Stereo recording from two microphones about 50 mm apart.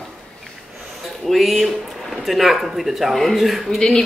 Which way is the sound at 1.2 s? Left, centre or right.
Centre.